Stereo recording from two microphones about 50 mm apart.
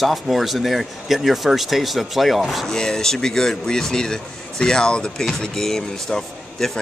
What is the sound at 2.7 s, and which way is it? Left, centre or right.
Speech, centre.